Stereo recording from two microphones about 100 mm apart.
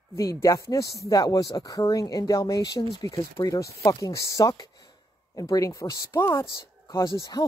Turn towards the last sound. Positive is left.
turn(degrees=30)  # may be behind; listen again after turning